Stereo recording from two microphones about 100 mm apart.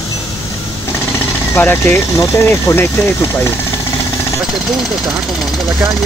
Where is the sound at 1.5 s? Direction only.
20° left (ahead or behind).